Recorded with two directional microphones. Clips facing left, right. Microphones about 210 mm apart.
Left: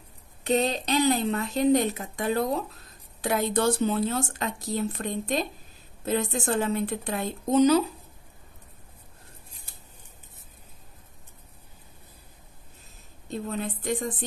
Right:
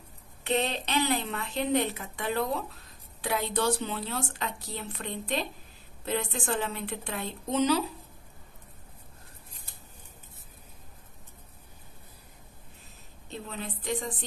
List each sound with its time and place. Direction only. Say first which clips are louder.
0.4 s a woman's voice: left 4 dB; 40° left (ahead or behind)
13.3 s a woman's voice: left 7 dB; 50° left (ahead or behind)